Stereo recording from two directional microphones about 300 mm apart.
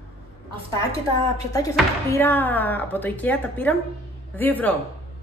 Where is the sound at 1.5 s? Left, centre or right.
Centre.